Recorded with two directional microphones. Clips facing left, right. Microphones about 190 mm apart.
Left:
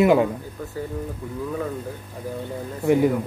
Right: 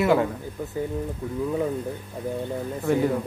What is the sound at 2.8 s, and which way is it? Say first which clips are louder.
Speech: left 5 dB; 15° left (ahead or behind).